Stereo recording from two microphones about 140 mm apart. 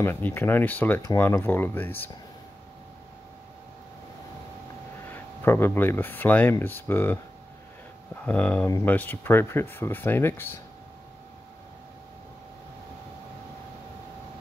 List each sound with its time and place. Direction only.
0.0 s speech: 15° left (ahead or behind)
5.1 s speech: 15° left (ahead or behind)